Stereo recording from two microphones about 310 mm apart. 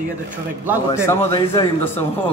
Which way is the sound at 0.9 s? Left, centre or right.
Centre.